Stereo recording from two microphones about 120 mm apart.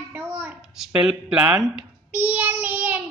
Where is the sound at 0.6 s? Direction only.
Centre (ahead or behind).